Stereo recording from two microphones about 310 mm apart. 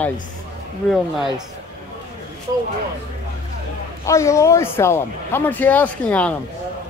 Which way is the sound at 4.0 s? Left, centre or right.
Centre.